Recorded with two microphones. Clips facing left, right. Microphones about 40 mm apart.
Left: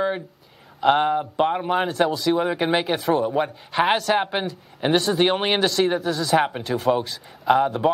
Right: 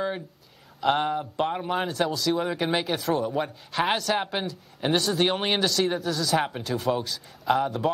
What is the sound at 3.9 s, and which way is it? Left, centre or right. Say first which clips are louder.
Speech: left 5 dB; centre.